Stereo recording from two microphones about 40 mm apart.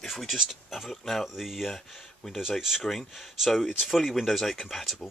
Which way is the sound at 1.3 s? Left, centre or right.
Centre.